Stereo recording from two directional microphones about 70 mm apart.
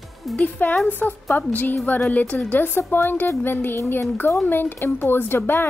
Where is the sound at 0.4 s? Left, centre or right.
Left.